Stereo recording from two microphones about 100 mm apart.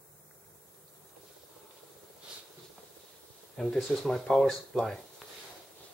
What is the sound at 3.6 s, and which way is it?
Speech, centre (ahead or behind).